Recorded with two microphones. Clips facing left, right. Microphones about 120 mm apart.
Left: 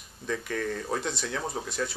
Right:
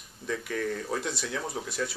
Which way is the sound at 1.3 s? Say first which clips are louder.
Left 1 dB; 20° left (ahead or behind).